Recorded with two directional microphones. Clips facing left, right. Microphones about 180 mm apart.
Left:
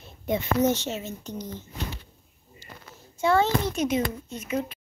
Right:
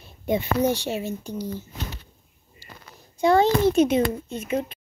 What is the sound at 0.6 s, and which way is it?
Speech, 10° right (ahead or behind).